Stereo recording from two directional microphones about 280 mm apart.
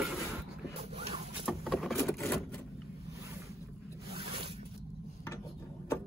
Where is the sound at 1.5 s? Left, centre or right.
Centre.